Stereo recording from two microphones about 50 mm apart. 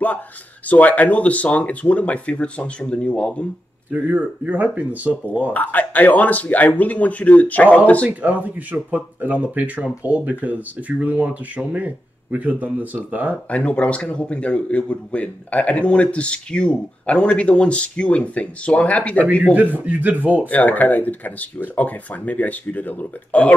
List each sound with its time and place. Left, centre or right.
0.7 s speech: left
3.9 s speech: right
5.5 s speech: left
8.2 s speech: right
13.5 s speech: left
19.5 s speech: right
20.4 s speech: left